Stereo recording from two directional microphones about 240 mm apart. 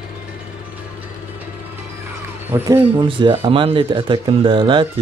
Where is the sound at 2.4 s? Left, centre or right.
Centre.